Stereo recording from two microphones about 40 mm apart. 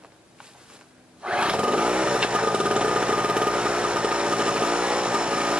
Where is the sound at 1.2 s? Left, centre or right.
Right.